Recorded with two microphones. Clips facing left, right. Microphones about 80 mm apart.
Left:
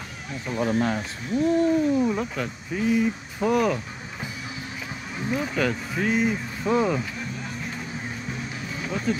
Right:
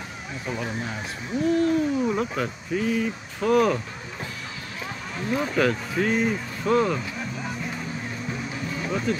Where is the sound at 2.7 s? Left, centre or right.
Centre.